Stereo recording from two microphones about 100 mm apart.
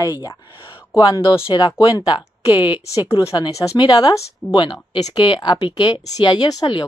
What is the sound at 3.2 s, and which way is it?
Speech, 35° left (ahead or behind).